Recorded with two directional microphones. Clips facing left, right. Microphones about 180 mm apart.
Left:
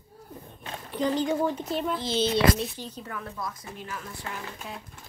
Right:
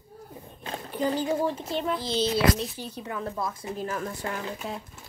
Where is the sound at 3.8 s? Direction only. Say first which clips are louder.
Right 8 dB; 45° right (ahead or behind).